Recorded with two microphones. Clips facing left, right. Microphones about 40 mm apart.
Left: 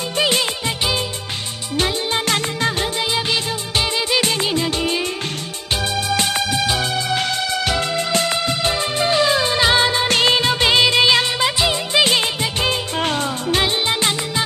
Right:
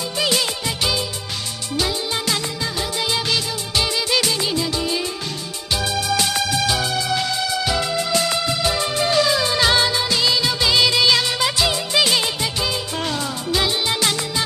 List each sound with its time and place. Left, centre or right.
2.2 s music: left
4.2 s music: left
7.6 s music: left
9.0 s music: left
10.0 s music: left; by 12.0 s centre
12.0 s music: left
13.0 s music: left
13.8 s music: left